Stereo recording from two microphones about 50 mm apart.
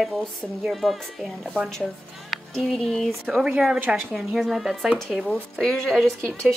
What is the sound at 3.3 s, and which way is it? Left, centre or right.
Speech, centre.